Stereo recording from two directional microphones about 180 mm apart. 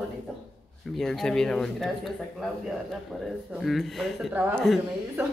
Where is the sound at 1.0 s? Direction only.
Centre (ahead or behind).